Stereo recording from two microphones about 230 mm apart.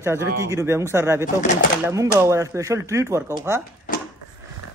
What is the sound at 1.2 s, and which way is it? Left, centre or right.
Speech, left.